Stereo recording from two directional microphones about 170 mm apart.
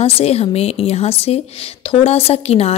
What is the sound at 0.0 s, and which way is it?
A woman's voice, 40° left (ahead or behind).